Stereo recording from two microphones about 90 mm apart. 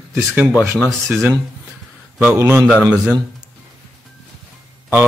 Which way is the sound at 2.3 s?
25° right (ahead or behind).